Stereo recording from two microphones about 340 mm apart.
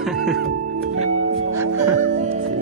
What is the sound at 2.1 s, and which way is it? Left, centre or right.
Music, right.